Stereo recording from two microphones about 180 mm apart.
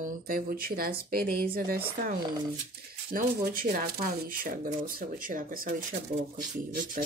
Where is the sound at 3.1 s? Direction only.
50° right (ahead or behind).